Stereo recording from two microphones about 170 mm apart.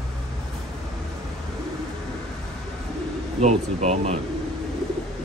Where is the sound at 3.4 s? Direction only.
40° right (ahead or behind).